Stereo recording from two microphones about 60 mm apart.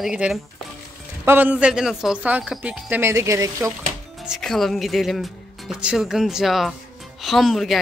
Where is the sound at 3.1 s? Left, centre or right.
Right.